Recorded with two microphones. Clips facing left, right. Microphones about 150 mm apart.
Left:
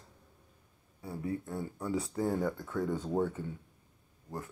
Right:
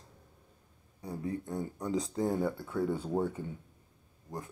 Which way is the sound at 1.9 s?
35° right (ahead or behind).